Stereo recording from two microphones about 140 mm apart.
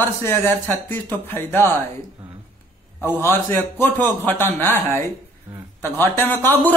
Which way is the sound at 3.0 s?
15° left (ahead or behind).